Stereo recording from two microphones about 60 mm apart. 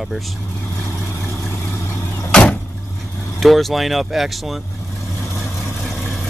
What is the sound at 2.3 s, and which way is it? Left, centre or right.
Vehicle, centre.